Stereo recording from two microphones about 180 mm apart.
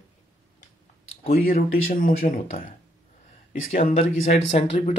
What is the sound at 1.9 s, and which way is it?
Speech, 50° left (ahead or behind).